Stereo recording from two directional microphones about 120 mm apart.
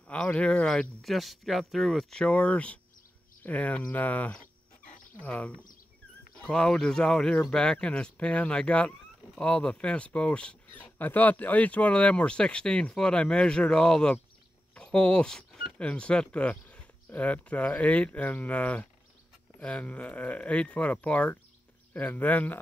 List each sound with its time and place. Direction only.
0.1 s speech: 10° left (ahead or behind)